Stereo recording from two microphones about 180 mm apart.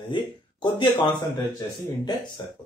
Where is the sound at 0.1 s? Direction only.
25° left (ahead or behind).